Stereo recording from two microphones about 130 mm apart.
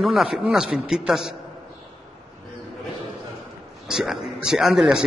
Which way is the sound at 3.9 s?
5° right (ahead or behind).